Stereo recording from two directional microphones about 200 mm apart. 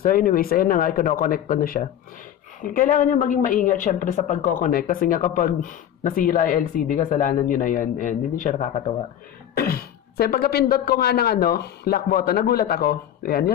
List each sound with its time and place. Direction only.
0.0 s speech: 45° left (ahead or behind)
9.6 s speech: 50° left (ahead or behind)